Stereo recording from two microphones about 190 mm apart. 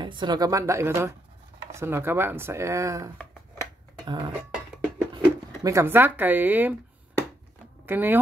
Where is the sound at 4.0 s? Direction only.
20° right (ahead or behind).